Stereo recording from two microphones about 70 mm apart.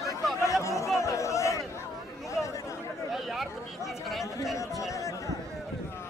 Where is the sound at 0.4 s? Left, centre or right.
Left.